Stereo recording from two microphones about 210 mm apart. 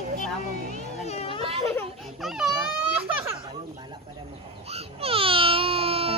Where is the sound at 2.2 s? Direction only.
Centre (ahead or behind).